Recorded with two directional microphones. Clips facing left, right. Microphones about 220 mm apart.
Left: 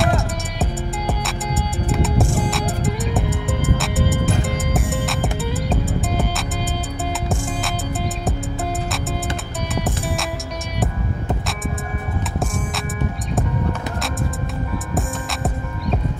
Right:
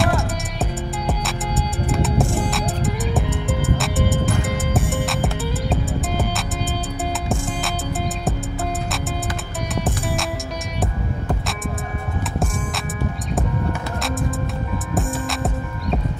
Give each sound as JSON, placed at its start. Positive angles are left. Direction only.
{"t": 0.0, "sound": "music", "side_deg": 0}
{"t": 9.8, "sound": "music", "side_deg": 0}
{"t": 15.0, "sound": "music", "side_deg": 0}